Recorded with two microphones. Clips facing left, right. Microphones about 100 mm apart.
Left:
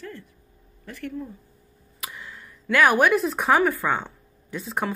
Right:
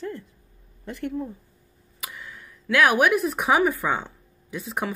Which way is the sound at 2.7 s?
10° right (ahead or behind).